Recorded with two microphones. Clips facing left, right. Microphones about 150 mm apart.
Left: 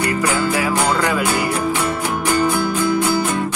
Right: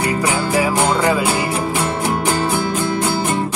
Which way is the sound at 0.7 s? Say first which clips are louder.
Right 2 dB; 25° right (ahead or behind).